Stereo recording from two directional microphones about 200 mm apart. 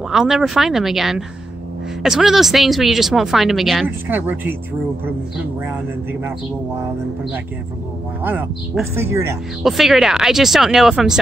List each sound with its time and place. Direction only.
0.1 s speech: 5° right (ahead or behind)
8.2 s speech: 10° right (ahead or behind)
9.6 s speech: centre (ahead or behind)